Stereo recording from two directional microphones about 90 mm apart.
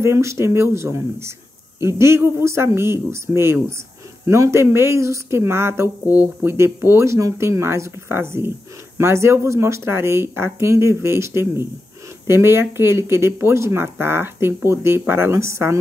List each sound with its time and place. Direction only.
0.0 s speech: 30° right (ahead or behind)